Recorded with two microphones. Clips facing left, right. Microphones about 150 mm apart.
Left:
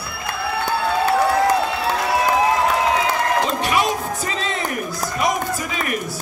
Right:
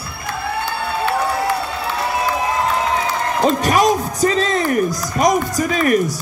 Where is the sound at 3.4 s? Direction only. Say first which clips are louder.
Right 5 dB; 40° right (ahead or behind).